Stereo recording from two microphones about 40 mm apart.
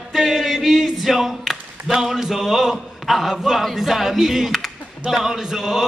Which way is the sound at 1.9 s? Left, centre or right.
Centre.